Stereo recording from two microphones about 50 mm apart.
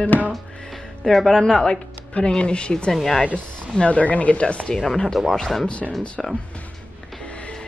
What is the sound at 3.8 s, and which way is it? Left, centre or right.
Speech, left.